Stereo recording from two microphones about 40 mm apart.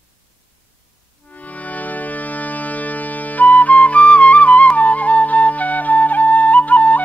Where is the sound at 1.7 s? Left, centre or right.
Left.